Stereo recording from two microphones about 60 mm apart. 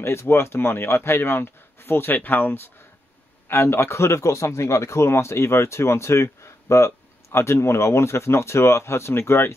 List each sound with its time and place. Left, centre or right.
0.0 s a man's voice: left